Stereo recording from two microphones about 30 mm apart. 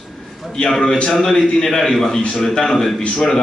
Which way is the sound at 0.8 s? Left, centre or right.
Left.